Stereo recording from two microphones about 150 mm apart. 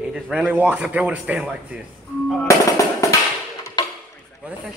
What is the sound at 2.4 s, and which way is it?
Speech, 20° left (ahead or behind).